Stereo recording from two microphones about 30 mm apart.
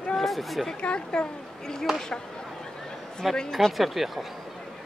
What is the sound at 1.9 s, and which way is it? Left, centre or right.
Speech, centre.